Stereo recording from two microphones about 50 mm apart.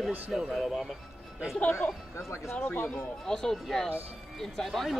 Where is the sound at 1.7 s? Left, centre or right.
Left.